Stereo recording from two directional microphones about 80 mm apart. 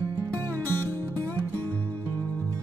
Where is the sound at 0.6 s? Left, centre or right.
Left.